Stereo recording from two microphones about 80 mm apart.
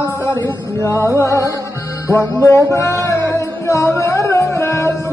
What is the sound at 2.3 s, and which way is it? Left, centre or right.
Music, left.